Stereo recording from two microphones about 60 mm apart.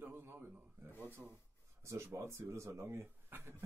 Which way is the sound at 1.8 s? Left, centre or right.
Right.